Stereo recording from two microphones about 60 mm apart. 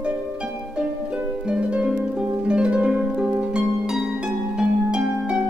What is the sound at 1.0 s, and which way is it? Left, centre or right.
Harp, centre.